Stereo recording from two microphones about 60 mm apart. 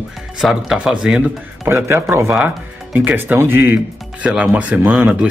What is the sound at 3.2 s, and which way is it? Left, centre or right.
Speech, right.